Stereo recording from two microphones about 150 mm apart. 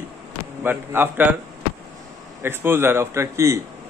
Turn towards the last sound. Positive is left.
turn(degrees=-20)  # may be behind; listen again after turning